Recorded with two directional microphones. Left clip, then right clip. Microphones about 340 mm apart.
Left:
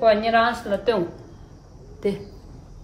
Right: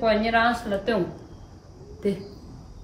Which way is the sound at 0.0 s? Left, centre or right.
Centre.